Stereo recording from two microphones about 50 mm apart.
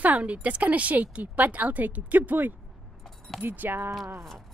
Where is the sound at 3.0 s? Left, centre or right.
Centre.